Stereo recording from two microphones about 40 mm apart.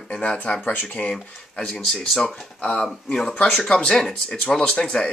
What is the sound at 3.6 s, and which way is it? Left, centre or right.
Speech, left.